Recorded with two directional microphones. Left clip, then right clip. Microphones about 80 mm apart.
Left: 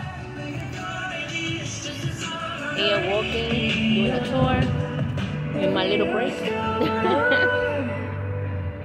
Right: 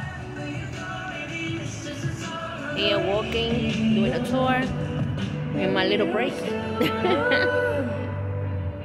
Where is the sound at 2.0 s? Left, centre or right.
Left.